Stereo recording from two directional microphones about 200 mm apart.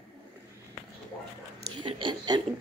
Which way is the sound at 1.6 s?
25° right (ahead or behind).